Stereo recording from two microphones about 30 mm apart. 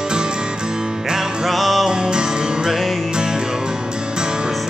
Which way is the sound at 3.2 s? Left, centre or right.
Right.